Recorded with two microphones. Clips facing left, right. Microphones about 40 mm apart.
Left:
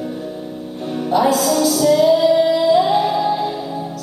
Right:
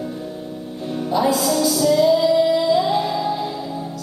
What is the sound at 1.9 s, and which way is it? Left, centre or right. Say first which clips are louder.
Music: left 2 dB; centre.